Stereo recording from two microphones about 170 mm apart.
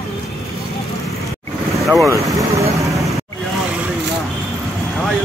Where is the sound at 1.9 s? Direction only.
15° right (ahead or behind).